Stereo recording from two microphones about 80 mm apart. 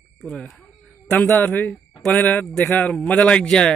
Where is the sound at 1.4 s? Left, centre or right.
Left.